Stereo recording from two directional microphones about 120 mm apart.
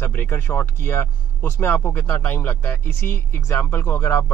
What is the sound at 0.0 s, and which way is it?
Speech, 20° left (ahead or behind).